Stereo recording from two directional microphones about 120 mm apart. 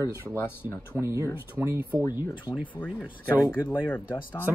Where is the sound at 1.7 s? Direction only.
15° right (ahead or behind).